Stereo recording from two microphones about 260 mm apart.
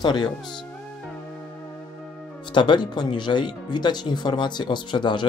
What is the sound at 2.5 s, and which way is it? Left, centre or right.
Speech, centre.